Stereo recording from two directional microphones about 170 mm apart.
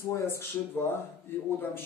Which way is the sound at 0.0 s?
15° left (ahead or behind).